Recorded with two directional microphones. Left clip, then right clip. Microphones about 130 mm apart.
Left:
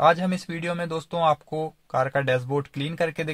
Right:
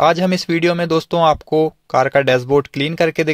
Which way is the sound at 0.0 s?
70° right (ahead or behind).